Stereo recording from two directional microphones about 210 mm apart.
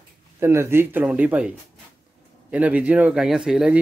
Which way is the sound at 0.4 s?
10° right (ahead or behind).